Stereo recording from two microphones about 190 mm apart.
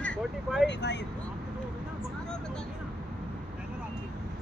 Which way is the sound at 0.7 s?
65° left (ahead or behind).